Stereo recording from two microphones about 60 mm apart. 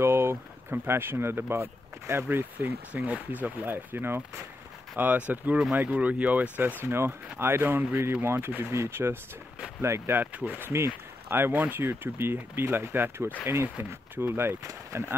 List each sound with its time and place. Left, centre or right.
0.0 s speech: right
2.9 s speech: right
6.6 s speech: right
10.1 s speech: right
10.7 s speech: right
14.6 s speech: right